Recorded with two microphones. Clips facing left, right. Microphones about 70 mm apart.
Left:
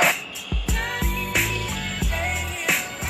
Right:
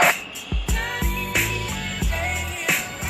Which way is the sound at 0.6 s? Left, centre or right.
Centre.